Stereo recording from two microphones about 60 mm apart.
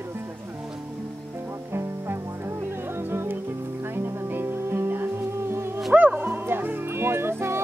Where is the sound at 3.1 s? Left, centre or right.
Right.